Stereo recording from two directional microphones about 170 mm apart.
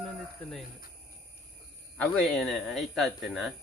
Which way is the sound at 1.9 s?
5° left (ahead or behind).